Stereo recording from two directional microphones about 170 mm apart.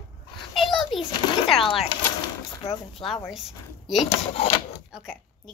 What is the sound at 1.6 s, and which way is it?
Speech, 30° left (ahead or behind).